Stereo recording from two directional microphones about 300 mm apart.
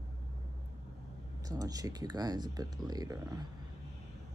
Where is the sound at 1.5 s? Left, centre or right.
Centre.